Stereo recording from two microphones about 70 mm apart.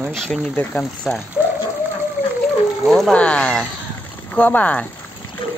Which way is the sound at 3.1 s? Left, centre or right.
Centre.